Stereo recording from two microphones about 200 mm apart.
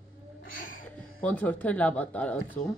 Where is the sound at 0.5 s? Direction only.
45° left (ahead or behind).